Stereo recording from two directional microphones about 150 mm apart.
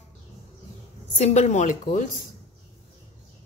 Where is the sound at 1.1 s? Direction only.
50° left (ahead or behind).